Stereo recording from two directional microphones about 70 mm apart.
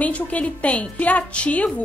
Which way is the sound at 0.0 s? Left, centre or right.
Left.